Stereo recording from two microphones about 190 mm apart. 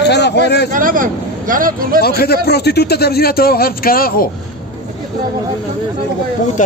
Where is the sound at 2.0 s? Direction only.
55° left (ahead or behind).